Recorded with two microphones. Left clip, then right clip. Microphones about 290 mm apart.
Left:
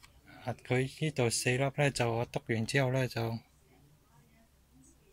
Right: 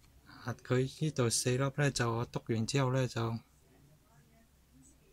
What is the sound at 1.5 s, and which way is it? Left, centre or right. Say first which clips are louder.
Speech: left 3 dB; centre.